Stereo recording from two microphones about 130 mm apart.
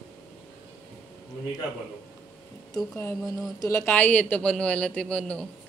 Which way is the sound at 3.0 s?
25° left (ahead or behind).